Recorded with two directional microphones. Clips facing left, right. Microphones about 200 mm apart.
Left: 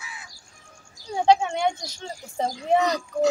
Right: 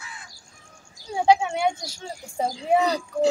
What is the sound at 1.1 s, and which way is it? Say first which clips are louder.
Speech: even; 5° right (ahead or behind).